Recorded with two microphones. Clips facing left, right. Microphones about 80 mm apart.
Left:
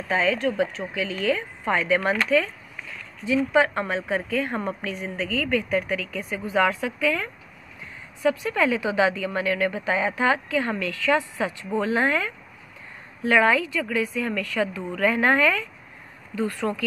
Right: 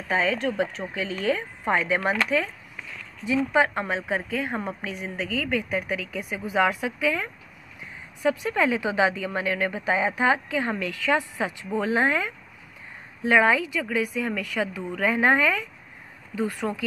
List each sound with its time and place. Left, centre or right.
0.1 s a woman's voice: right